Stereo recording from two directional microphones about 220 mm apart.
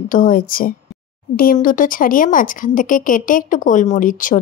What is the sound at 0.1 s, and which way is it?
A woman's voice, 40° left (ahead or behind).